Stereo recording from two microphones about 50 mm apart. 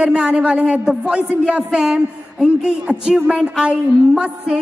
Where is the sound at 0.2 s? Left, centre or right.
Right.